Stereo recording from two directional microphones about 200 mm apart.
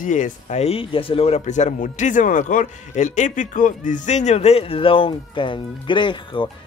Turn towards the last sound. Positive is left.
turn(degrees=25)  # may be behind; listen again after turning